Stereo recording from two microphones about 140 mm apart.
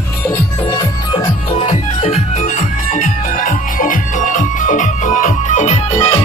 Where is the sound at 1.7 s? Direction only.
50° left (ahead or behind).